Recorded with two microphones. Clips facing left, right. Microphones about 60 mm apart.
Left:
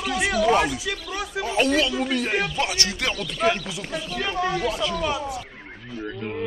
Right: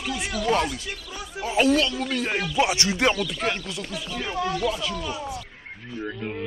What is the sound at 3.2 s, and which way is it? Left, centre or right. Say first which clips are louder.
Speech: left 4 dB; centre.